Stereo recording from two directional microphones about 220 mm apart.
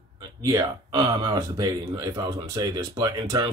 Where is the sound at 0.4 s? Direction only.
15° right (ahead or behind).